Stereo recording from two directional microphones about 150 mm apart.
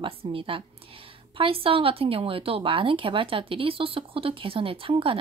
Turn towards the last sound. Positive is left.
turn(degrees=-35)  # may be behind; listen again after turning